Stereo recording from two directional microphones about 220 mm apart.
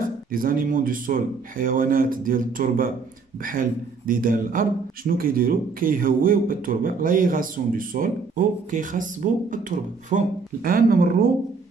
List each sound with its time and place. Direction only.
0.0 s speech: 40° right (ahead or behind)